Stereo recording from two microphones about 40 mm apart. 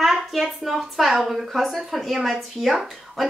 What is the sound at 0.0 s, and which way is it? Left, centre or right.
A woman's voice, centre.